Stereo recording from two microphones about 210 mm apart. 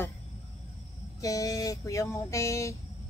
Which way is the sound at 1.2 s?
15° left (ahead or behind).